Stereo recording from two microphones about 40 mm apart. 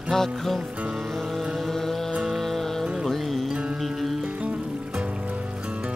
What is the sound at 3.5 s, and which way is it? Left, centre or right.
Music, right.